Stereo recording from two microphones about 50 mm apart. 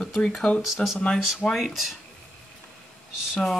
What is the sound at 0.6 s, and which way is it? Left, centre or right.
Speech, centre.